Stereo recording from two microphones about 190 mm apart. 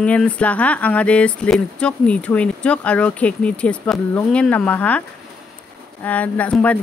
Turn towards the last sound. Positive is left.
turn(degrees=5)  # may be behind; listen again after turning